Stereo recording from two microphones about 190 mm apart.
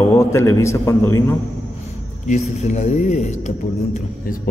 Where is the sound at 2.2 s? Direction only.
40° left (ahead or behind).